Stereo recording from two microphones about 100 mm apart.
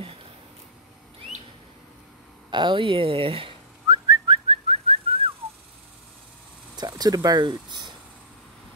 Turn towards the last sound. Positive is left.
turn(degrees=-45)  # may be behind; listen again after turning